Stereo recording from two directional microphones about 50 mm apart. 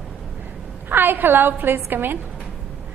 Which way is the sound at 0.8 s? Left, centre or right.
Right.